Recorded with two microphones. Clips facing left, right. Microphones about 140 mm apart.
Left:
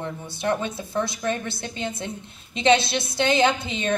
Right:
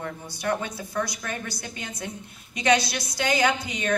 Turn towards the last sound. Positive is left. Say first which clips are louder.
# left 3 dB
turn(degrees=25)  # may be behind; listen again after turning